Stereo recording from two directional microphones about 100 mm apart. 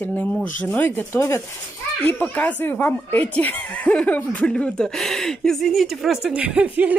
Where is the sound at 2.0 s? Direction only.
15° left (ahead or behind).